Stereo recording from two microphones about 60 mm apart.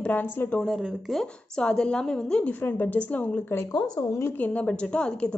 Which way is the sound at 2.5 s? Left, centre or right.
Left.